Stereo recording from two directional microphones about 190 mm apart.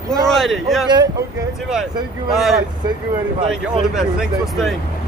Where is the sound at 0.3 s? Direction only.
Centre (ahead or behind).